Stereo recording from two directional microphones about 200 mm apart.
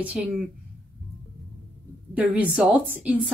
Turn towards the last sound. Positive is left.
turn(degrees=-5)  # may be behind; listen again after turning